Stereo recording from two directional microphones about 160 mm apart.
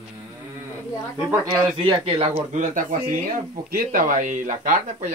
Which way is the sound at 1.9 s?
35° right (ahead or behind).